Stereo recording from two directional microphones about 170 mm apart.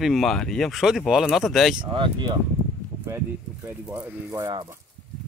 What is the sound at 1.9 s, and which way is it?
Speech, 30° right (ahead or behind).